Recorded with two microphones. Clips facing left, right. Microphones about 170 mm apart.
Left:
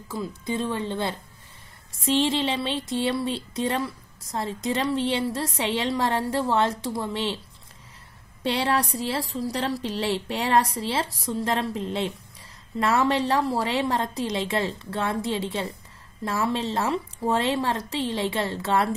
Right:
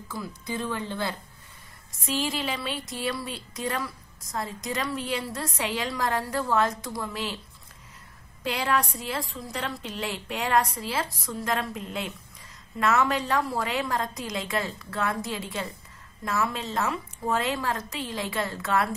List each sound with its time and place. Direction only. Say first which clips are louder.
0.1 s a woman's voice: left 5 dB; 25° left (ahead or behind)
8.5 s a woman's voice: left 3 dB; 30° left (ahead or behind)